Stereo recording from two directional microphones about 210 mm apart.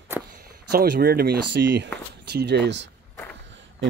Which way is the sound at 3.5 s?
60° right (ahead or behind).